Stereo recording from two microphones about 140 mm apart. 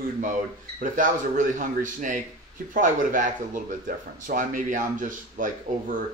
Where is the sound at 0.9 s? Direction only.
70° right (ahead or behind).